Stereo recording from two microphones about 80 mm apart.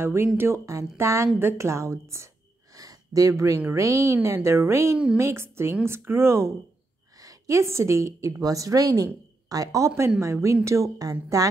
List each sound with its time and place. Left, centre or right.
0.0 s speech: right
7.2 s a woman's voice: right